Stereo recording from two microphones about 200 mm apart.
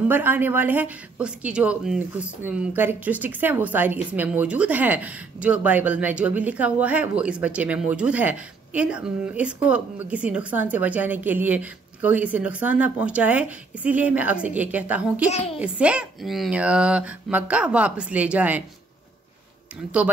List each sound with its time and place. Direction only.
0.1 s speech: 10° right (ahead or behind)
15.3 s speech: 30° left (ahead or behind)
15.6 s speech: 5° right (ahead or behind)